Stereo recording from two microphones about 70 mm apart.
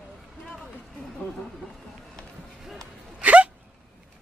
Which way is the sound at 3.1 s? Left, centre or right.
Centre.